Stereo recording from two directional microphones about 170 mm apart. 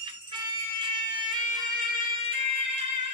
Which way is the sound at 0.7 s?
30° right (ahead or behind).